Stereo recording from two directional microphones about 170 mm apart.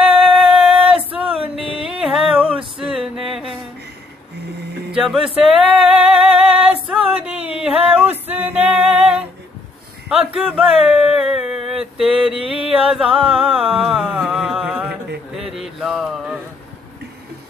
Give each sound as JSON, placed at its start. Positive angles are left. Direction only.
{"t": 0.0, "sound": "music", "side_deg": -5}
{"t": 0.8, "sound": "a sound", "side_deg": -35}
{"t": 1.2, "sound": "music", "side_deg": -10}
{"t": 1.6, "sound": "music", "side_deg": -35}
{"t": 1.9, "sound": "music", "side_deg": -5}
{"t": 4.9, "sound": "music", "side_deg": 0}
{"t": 6.9, "sound": "a sound", "side_deg": -5}
{"t": 8.3, "sound": "music", "side_deg": -10}
{"t": 10.0, "sound": "a sound", "side_deg": -5}